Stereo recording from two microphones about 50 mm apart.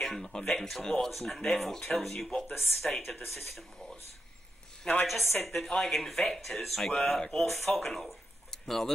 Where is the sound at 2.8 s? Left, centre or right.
Centre.